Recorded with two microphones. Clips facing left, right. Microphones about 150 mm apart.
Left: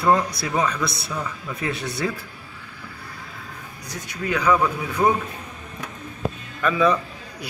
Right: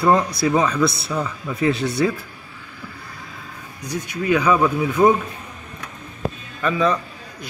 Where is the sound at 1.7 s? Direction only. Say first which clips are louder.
Right 9 dB; 20° right (ahead or behind).